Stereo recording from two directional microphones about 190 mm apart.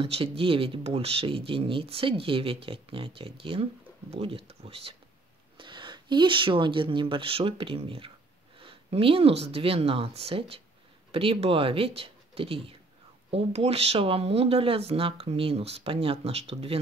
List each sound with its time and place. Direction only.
0.0 s speech: 30° right (ahead or behind)